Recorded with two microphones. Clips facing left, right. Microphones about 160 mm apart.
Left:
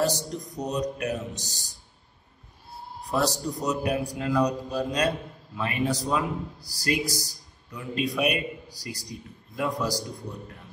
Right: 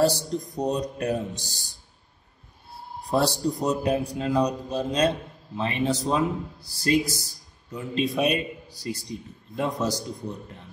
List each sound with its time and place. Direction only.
0.0 s speech: 30° right (ahead or behind)
3.1 s a man's voice: 30° right (ahead or behind)